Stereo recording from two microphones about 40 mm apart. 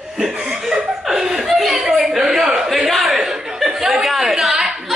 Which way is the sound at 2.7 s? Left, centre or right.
Centre.